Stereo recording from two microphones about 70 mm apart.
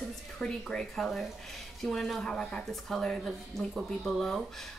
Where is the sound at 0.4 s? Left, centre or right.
Centre.